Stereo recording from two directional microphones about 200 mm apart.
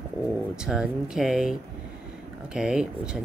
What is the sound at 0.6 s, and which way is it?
Speech, 5° right (ahead or behind).